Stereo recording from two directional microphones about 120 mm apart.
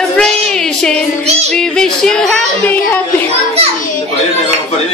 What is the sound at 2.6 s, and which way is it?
Speech, 15° left (ahead or behind).